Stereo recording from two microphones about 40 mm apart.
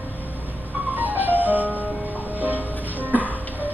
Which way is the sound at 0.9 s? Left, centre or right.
Right.